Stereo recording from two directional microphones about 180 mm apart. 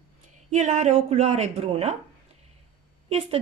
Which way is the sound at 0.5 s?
40° right (ahead or behind).